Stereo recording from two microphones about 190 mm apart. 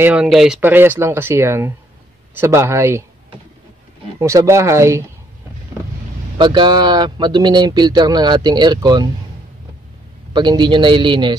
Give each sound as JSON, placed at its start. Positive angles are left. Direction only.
{"t": 0.0, "sound": "speech", "side_deg": -5}
{"t": 4.2, "sound": "speech", "side_deg": -15}
{"t": 6.3, "sound": "speech", "side_deg": -25}
{"t": 10.3, "sound": "speech", "side_deg": -25}